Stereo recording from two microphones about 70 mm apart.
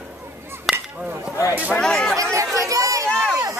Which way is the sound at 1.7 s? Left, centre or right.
Centre.